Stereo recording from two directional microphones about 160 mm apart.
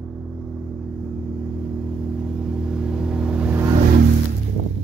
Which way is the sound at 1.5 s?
5° right (ahead or behind).